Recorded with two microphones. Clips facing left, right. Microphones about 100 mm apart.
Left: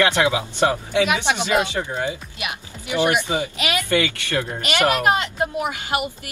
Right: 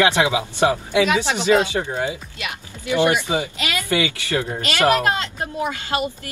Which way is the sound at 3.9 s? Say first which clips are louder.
Right 2 dB; 15° right (ahead or behind).